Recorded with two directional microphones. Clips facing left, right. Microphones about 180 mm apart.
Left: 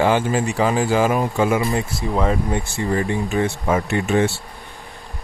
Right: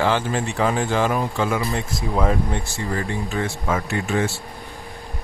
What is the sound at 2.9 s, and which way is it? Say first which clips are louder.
Speech: left 5 dB; 15° left (ahead or behind).